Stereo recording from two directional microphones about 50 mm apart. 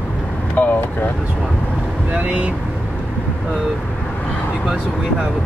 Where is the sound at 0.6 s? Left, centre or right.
Left.